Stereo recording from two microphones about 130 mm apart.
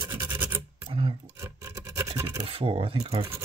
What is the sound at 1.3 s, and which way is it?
Filing, 20° right (ahead or behind).